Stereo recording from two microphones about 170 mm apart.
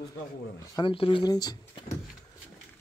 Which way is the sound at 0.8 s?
30° left (ahead or behind).